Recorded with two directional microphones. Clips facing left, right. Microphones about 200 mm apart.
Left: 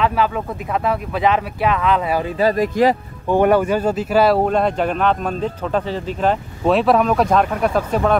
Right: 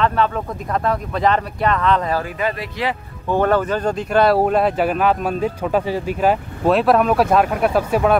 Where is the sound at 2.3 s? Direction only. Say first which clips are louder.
Left 7 dB; 40° left (ahead or behind).